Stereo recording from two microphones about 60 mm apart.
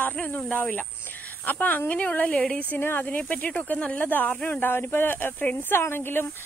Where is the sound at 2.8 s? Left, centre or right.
Left.